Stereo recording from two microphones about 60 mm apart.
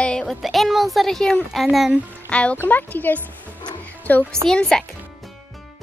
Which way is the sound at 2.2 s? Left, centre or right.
Left.